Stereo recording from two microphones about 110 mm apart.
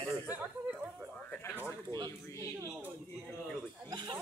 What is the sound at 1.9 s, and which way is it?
Speech, 40° right (ahead or behind).